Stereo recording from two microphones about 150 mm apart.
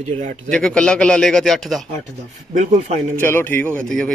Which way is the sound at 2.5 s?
50° right (ahead or behind).